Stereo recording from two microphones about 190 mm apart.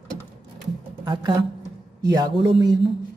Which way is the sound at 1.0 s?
25° right (ahead or behind).